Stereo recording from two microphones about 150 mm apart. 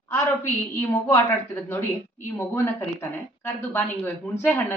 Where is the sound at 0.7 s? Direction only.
15° left (ahead or behind).